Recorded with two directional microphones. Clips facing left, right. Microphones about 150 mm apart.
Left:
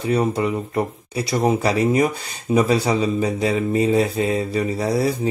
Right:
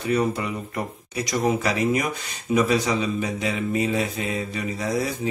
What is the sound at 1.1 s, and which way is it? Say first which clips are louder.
Speech: left 3 dB; 30° left (ahead or behind).